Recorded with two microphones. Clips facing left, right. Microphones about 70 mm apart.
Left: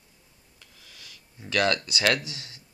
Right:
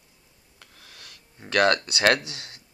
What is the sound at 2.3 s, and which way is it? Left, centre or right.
Speech, right.